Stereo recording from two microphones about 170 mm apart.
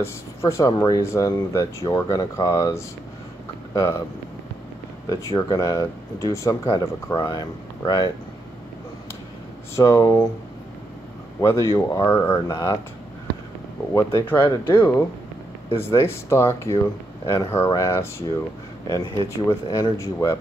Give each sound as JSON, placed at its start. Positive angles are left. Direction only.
{"t": 0.0, "sound": "speech", "side_deg": 15}
{"t": 5.1, "sound": "speech", "side_deg": 20}
{"t": 9.8, "sound": "speech", "side_deg": 15}
{"t": 11.4, "sound": "speech", "side_deg": 20}
{"t": 13.9, "sound": "speech", "side_deg": 10}